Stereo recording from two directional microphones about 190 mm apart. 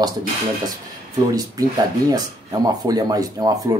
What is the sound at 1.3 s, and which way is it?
Speech, 20° right (ahead or behind).